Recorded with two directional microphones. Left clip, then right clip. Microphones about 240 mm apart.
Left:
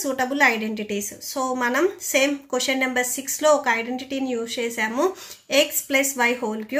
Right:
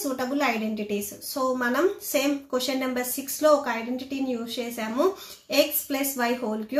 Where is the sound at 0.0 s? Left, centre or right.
Left.